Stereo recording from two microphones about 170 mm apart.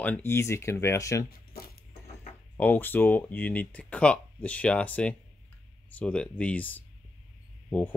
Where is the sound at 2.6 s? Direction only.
10° left (ahead or behind).